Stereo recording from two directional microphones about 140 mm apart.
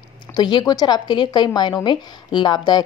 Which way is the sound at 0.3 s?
30° left (ahead or behind).